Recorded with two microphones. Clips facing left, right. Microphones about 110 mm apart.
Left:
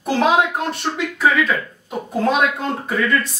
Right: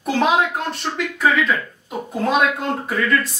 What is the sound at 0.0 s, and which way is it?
Speech, centre (ahead or behind).